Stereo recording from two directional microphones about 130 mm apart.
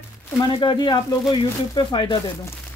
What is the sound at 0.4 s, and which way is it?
Speech, 35° left (ahead or behind).